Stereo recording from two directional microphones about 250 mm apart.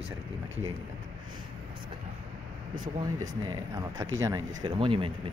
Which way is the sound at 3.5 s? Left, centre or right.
Centre.